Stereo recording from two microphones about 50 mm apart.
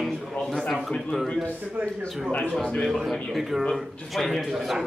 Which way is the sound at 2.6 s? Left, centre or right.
Centre.